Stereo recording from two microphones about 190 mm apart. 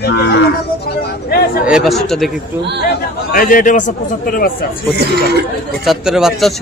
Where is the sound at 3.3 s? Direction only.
45° left (ahead or behind).